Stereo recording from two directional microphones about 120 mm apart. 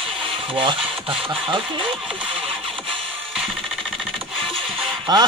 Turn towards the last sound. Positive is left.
turn(degrees=-35)  # may be behind; listen again after turning